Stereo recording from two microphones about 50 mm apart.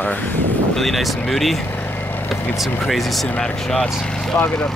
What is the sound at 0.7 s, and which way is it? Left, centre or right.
Speech, centre.